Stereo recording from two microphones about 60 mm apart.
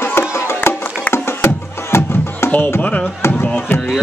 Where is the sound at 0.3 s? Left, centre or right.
Left.